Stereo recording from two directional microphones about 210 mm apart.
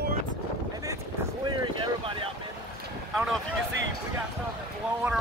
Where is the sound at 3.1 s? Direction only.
Centre (ahead or behind).